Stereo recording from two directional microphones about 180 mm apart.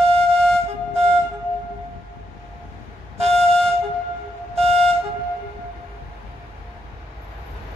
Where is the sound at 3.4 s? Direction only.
35° right (ahead or behind).